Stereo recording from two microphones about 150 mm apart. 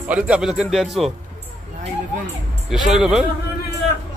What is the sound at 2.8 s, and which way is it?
Speech, 5° right (ahead or behind).